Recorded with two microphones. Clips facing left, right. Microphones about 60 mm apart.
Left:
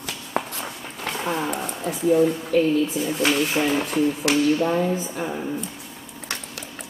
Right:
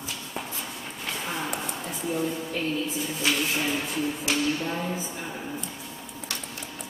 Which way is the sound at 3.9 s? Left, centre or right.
Left.